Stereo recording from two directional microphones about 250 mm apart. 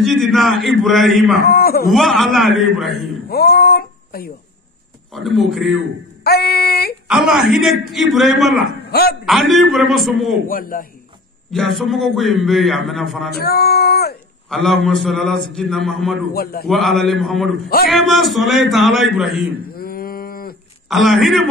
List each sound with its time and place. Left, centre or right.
0.0 s a man's voice: centre
1.5 s a man's voice: left
1.9 s a man's voice: centre
3.3 s speech: left
5.1 s a man's voice: centre
6.2 s speech: left
7.1 s a man's voice: centre
10.5 s speech: left
11.5 s a man's voice: centre
13.3 s speech: left
14.5 s a man's voice: centre
19.7 s livestock: left
20.9 s a man's voice: centre